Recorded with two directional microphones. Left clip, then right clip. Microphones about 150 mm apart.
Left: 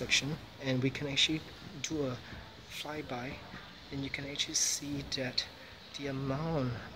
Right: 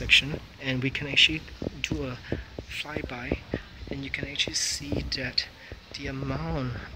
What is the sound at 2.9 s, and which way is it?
Speech, 10° left (ahead or behind).